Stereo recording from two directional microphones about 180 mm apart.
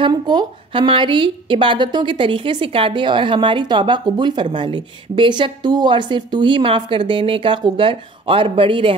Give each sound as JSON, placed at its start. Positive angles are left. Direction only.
{"t": 0.0, "sound": "a woman's voice", "side_deg": -25}